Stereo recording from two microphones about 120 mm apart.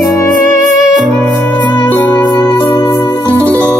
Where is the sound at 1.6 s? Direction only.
40° left (ahead or behind).